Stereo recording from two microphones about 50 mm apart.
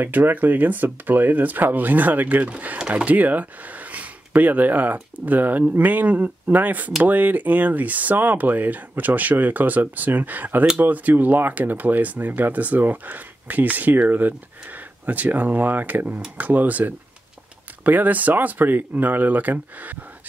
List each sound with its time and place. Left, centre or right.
0.0 s speech: right